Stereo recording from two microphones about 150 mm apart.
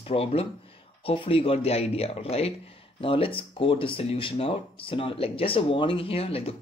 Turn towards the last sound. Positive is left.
turn(degrees=40)  # may be behind; listen again after turning